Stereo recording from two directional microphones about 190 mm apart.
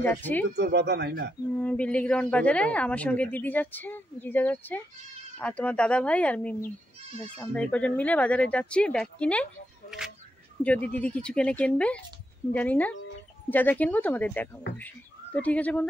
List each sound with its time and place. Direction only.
0.0 s a woman's voice: 10° left (ahead or behind)
0.6 s speech: 60° right (ahead or behind)
1.6 s a woman's voice: 5° left (ahead or behind)